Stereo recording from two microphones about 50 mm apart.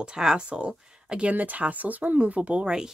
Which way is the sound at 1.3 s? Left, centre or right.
Right.